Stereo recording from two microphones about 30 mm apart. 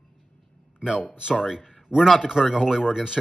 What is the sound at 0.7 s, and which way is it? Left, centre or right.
A man's voice, right.